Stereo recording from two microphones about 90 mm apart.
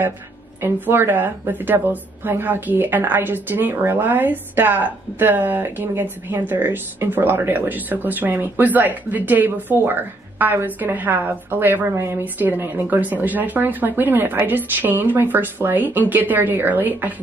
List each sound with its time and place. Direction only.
0.6 s a woman's voice: 25° right (ahead or behind)